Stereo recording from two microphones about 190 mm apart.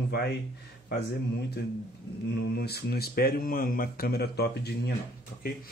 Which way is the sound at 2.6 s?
55° left (ahead or behind).